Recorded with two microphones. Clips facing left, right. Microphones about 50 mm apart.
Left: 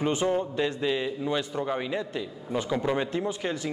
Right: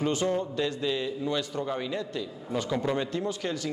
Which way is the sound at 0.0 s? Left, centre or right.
Centre.